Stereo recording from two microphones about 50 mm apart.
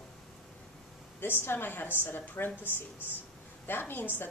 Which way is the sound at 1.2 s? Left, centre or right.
Left.